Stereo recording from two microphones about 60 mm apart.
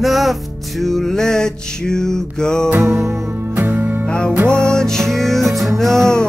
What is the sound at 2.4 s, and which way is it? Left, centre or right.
Music, centre.